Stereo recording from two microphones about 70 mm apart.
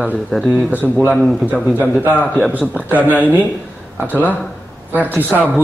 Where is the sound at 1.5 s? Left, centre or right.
Right.